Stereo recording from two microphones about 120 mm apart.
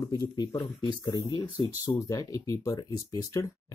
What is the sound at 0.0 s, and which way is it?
Speech, 35° left (ahead or behind).